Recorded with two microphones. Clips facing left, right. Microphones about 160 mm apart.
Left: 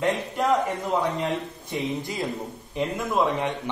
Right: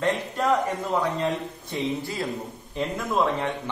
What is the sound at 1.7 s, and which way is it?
Speech, 20° left (ahead or behind).